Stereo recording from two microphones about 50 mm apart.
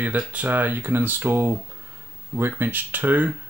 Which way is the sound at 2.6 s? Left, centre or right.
Right.